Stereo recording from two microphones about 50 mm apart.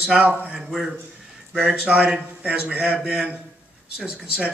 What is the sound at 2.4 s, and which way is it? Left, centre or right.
A man's voice, right.